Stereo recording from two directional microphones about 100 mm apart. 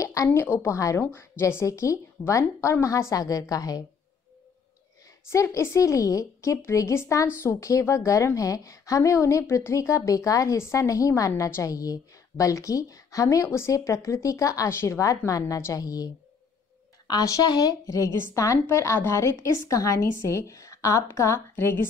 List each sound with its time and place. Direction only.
0.0 s a woman's voice: 30° left (ahead or behind)
5.3 s a woman's voice: 30° left (ahead or behind)
17.1 s a woman's voice: 40° left (ahead or behind)